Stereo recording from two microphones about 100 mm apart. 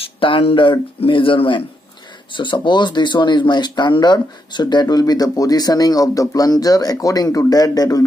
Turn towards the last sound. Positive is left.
turn(degrees=40)  # may be behind; listen again after turning